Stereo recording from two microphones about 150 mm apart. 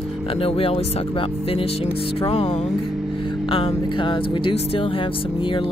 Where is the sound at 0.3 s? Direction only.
40° left (ahead or behind).